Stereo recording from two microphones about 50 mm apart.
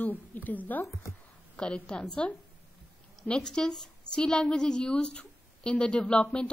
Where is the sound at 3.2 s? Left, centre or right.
Centre.